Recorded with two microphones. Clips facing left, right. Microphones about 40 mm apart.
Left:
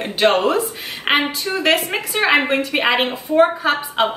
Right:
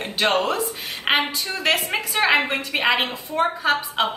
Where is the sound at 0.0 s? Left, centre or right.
Centre.